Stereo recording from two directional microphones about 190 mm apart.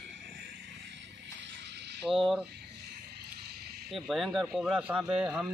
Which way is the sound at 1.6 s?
65° right (ahead or behind).